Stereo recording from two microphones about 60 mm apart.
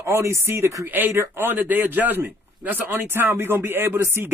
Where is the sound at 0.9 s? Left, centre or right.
Right.